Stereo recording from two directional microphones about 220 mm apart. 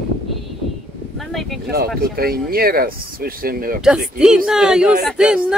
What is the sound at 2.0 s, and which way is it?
Speech, 40° right (ahead or behind).